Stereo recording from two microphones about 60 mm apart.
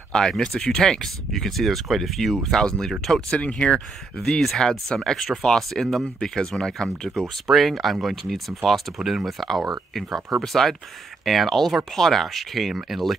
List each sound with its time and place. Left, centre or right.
0.1 s speech: centre
3.3 s speech: centre
4.2 s speech: centre
7.4 s speech: centre
10.4 s speech: centre